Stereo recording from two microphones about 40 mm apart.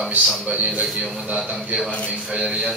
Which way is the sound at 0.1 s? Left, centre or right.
Right.